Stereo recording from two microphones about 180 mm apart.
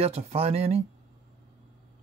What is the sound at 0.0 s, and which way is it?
Speech, 35° right (ahead or behind).